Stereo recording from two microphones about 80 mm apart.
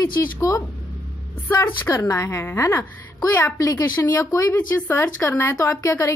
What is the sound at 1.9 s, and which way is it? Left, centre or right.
Speech, left.